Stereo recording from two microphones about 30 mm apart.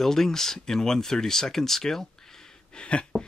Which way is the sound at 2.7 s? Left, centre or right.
Left.